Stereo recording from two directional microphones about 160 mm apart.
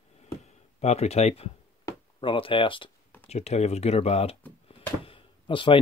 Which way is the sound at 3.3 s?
45° left (ahead or behind).